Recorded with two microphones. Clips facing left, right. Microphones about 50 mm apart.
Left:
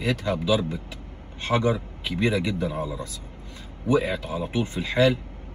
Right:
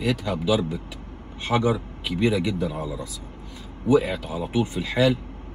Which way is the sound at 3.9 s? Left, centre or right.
Left.